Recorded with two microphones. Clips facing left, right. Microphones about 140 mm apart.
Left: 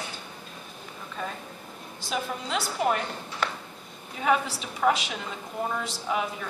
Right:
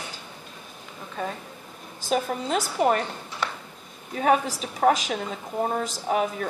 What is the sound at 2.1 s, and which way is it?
Speech, 45° right (ahead or behind).